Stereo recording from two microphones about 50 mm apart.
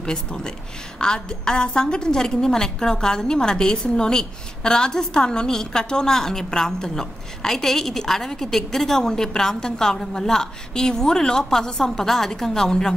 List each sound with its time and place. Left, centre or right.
0.0 s a woman's voice: centre